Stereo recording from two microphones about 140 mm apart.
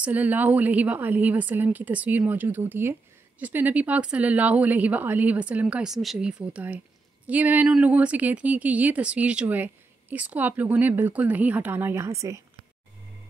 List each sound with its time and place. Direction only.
0.0 s a woman's voice: 10° right (ahead or behind)